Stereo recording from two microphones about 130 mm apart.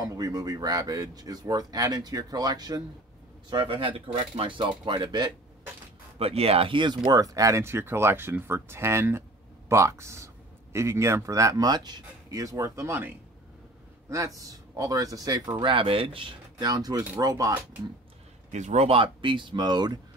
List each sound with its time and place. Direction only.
0.0 s speech: 30° right (ahead or behind)
3.4 s speech: 40° right (ahead or behind)
6.1 s speech: 50° right (ahead or behind); by 17.6 s 25° right (ahead or behind)
18.5 s speech: 65° right (ahead or behind); by 20.0 s 35° right (ahead or behind)